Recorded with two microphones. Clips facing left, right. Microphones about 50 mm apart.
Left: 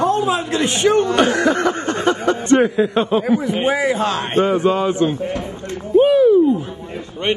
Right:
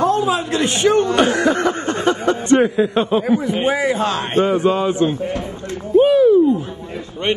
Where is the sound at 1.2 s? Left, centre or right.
Left.